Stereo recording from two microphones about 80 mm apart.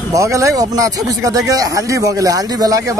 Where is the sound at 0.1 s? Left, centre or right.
Right.